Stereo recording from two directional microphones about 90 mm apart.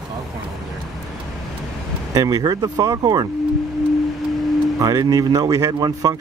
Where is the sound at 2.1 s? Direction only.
45° right (ahead or behind).